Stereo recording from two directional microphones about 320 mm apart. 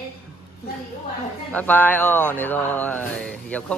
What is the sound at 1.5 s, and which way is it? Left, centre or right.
Speech, centre.